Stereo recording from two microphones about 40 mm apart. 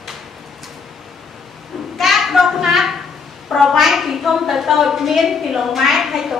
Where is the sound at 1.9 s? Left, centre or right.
Centre.